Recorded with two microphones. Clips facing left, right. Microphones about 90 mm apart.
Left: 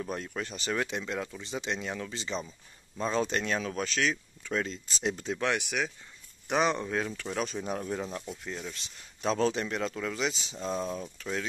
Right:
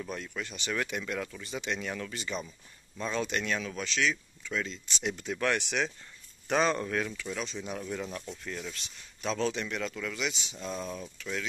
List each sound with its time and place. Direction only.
0.0 s speech: 35° left (ahead or behind)
5.5 s speech: 10° left (ahead or behind); by 7.2 s 25° left (ahead or behind)
7.2 s speech: 40° left (ahead or behind)